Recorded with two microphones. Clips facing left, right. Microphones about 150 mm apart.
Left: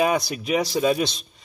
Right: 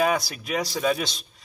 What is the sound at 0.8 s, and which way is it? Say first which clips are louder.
Speech: left 3 dB; centre (ahead or behind).